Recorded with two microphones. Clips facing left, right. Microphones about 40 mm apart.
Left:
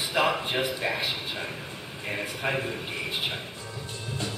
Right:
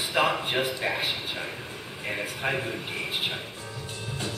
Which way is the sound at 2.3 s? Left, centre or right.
Centre.